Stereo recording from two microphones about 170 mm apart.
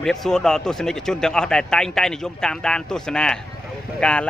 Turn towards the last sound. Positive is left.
turn(degrees=5)  # may be behind; listen again after turning